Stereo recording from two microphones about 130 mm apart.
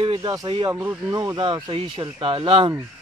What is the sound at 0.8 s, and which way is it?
Speech, 10° right (ahead or behind).